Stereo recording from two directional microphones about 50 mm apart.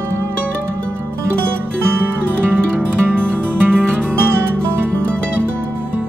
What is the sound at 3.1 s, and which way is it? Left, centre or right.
Music, centre.